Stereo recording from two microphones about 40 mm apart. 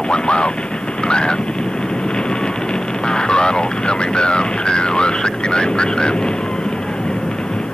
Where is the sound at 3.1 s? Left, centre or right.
Left.